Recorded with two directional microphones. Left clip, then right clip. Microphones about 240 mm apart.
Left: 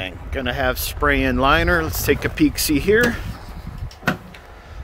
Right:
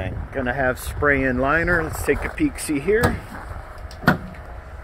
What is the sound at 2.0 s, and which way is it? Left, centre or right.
Speech, left.